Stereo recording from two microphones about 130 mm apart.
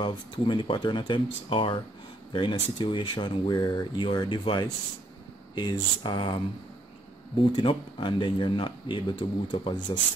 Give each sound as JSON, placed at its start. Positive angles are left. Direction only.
{"t": 0.0, "sound": "speech", "side_deg": 40}
{"t": 7.5, "sound": "speech", "side_deg": 40}